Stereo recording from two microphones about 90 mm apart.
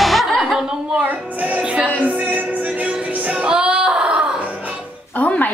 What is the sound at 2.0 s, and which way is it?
Music, 20° right (ahead or behind).